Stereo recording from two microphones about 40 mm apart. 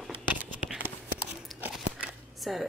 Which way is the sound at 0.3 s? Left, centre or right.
Right.